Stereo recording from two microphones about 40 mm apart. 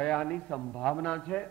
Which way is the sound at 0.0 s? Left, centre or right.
Left.